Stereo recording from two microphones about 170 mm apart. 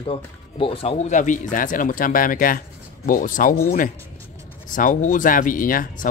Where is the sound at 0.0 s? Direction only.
35° left (ahead or behind).